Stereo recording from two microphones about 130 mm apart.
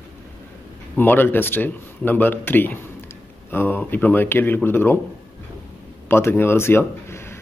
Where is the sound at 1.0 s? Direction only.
15° left (ahead or behind).